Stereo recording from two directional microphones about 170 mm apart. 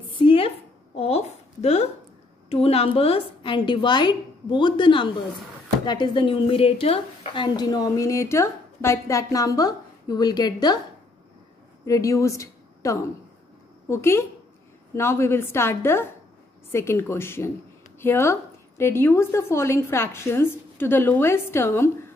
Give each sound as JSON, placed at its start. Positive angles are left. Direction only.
{"t": 0.2, "sound": "a sound", "side_deg": 30}
{"t": 2.5, "sound": "a woman's voice", "side_deg": 35}
{"t": 11.8, "sound": "a woman's voice", "side_deg": 20}